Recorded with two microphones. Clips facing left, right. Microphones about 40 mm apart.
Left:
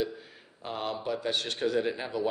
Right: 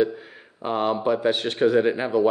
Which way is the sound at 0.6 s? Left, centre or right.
Right.